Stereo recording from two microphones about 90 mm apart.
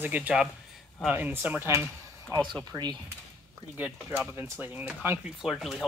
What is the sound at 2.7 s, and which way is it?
Speech, 50° right (ahead or behind).